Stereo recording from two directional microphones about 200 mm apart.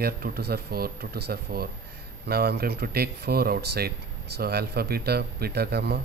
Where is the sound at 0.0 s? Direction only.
50° right (ahead or behind).